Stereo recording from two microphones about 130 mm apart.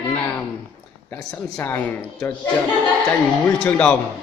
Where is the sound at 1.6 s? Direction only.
15° left (ahead or behind).